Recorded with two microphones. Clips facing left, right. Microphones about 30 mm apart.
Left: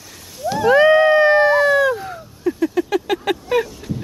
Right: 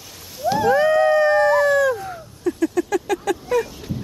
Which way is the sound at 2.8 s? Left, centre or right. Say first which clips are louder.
Left 2 dB; left.